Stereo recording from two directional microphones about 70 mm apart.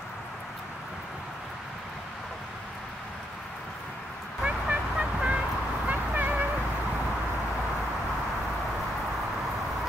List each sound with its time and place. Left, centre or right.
4.4 s vehicle: centre